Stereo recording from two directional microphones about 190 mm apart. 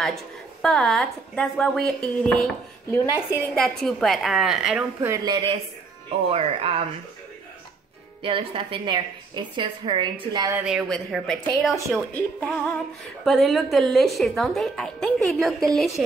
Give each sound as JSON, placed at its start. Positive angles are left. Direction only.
{"t": 0.0, "sound": "a woman's voice", "side_deg": 0}
{"t": 8.2, "sound": "a woman's voice", "side_deg": -30}
{"t": 10.6, "sound": "a woman's voice", "side_deg": 0}